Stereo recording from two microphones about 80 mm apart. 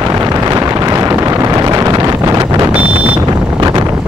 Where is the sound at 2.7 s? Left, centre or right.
Centre.